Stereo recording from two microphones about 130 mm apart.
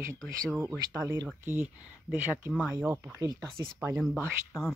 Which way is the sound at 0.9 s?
25° right (ahead or behind).